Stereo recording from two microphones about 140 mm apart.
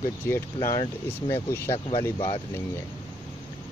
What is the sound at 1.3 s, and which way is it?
Speech, 20° left (ahead or behind).